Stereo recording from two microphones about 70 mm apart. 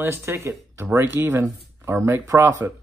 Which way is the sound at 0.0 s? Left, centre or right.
Right.